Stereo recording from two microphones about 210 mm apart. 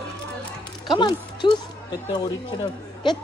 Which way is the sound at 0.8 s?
20° left (ahead or behind).